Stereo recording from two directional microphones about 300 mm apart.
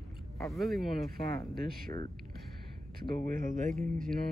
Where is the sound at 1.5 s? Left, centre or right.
Right.